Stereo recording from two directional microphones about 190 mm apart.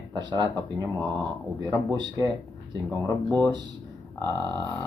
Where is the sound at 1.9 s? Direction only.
25° right (ahead or behind).